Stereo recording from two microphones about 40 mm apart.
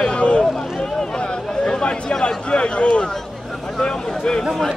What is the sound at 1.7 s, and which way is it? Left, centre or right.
Speech, left.